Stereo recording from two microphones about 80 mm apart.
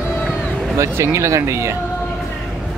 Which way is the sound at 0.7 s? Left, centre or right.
Right.